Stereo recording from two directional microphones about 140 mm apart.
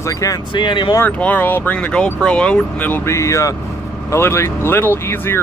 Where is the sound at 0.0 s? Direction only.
20° left (ahead or behind).